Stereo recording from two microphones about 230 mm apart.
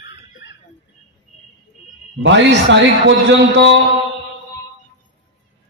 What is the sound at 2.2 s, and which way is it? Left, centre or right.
A man's voice, right.